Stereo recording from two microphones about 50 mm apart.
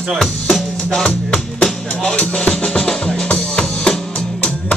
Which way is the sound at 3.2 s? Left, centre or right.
Left.